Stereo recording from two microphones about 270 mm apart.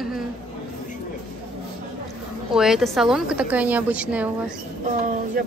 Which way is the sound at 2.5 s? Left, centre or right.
Centre.